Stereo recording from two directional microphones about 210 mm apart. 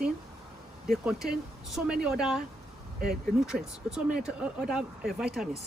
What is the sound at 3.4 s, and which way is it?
Speech, 5° right (ahead or behind).